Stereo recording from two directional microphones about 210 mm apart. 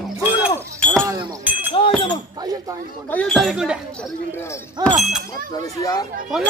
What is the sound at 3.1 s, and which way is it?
Speech, 5° left (ahead or behind).